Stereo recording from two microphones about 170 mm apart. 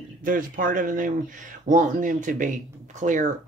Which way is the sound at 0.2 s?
55° right (ahead or behind).